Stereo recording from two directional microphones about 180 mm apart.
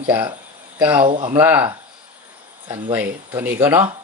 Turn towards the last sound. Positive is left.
turn(degrees=-10)  # may be behind; listen again after turning